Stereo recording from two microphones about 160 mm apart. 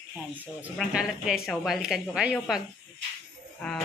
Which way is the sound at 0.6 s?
5° right (ahead or behind).